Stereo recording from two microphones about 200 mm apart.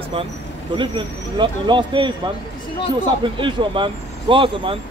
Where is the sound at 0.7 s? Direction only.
25° right (ahead or behind).